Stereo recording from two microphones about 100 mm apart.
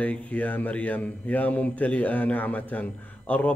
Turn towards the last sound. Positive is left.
turn(degrees=15)  # may be behind; listen again after turning